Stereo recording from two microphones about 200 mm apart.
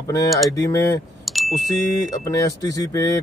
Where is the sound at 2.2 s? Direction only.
15° left (ahead or behind).